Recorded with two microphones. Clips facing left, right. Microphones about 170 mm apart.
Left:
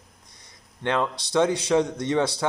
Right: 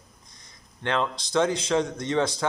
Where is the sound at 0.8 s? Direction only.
15° left (ahead or behind).